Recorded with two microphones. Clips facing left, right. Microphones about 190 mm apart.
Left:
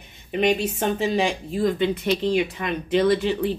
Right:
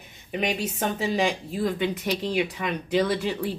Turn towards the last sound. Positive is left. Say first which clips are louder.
# left 5 dB
turn(degrees=0)  # may be behind; listen again after turning